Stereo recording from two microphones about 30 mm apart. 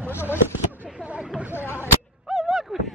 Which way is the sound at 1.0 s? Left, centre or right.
Right.